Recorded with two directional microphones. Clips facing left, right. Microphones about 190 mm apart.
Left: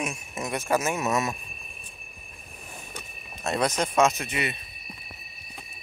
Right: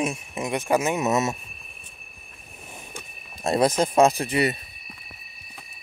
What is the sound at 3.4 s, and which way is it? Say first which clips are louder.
Speech: right 5 dB; 30° right (ahead or behind).